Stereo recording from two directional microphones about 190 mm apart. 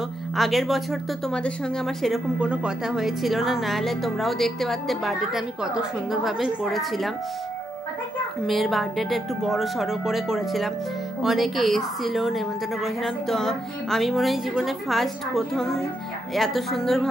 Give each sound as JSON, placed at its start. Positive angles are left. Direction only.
{"t": 0.4, "sound": "speech", "side_deg": 0}
{"t": 8.5, "sound": "speech", "side_deg": 0}